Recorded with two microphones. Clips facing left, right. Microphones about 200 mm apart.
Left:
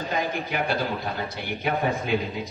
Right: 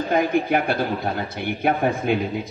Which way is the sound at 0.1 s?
55° right (ahead or behind).